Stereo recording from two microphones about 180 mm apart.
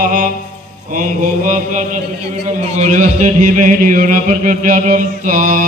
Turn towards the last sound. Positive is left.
turn(degrees=-50)  # may be behind; listen again after turning